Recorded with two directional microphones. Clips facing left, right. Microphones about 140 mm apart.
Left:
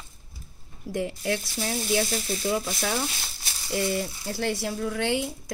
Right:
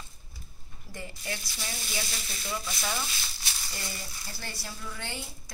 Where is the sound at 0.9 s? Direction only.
75° left (ahead or behind).